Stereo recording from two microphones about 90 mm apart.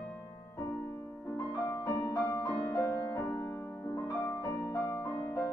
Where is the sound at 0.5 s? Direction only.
30° left (ahead or behind).